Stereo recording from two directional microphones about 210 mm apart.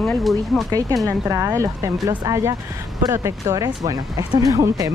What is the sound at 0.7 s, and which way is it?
Speech, 15° right (ahead or behind).